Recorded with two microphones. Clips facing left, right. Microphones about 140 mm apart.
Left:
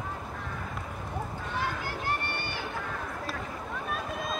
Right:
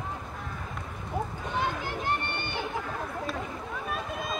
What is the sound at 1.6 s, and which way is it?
Chatter, 20° right (ahead or behind).